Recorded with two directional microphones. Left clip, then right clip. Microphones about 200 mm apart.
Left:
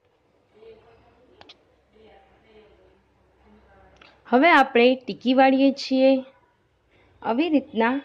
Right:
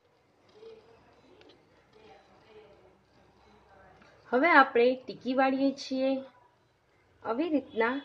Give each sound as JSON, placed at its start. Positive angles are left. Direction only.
{"t": 4.3, "sound": "a woman's voice", "side_deg": 40}
{"t": 7.2, "sound": "a woman's voice", "side_deg": 40}